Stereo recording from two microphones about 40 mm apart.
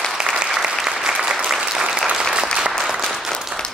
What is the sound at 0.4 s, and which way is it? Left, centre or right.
Applause, centre.